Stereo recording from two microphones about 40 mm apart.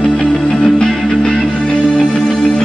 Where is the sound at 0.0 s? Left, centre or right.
Left.